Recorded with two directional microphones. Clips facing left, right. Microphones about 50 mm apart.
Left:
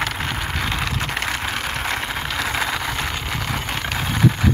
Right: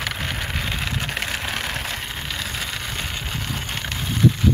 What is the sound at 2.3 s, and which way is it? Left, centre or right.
Vehicle, left.